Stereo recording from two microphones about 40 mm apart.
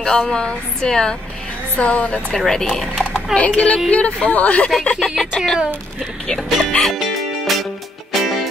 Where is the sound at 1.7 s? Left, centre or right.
Left.